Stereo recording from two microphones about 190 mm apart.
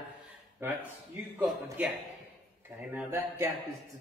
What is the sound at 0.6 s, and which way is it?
Speech, 15° right (ahead or behind).